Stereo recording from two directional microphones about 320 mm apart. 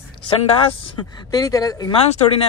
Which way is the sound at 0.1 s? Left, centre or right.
Centre.